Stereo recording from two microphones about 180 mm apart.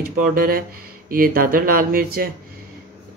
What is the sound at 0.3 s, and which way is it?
Speech, 55° right (ahead or behind).